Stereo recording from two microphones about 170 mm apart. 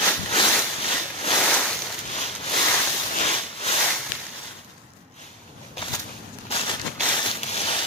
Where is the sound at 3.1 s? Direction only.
40° left (ahead or behind).